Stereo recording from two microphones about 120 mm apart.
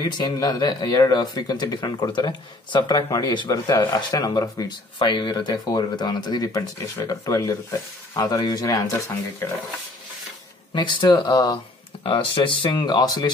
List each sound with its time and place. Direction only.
0.2 s speech: 35° left (ahead or behind)
10.7 s speech: 40° left (ahead or behind)